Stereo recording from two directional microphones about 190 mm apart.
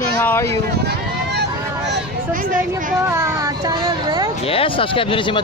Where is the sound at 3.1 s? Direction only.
15° right (ahead or behind).